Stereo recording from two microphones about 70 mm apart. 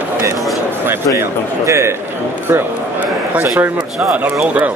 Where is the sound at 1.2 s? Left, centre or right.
Right.